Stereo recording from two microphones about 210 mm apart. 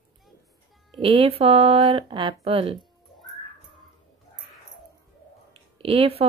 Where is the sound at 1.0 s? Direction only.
25° right (ahead or behind).